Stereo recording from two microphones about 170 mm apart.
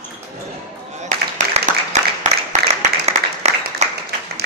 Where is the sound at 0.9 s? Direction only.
45° right (ahead or behind).